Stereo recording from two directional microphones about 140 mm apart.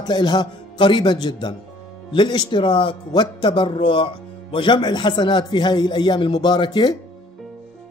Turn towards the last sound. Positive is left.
turn(degrees=30)  # may be behind; listen again after turning